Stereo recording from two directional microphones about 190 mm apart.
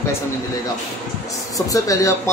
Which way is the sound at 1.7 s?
15° left (ahead or behind).